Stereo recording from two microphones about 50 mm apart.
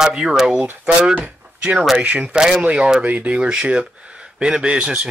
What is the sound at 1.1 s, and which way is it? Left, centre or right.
Speech, right.